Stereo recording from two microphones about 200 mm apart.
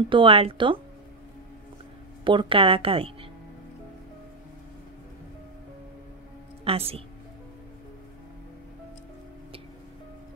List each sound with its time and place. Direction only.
0.1 s a woman's voice: 25° right (ahead or behind)
2.2 s a woman's voice: 25° right (ahead or behind)
6.7 s speech: 30° right (ahead or behind)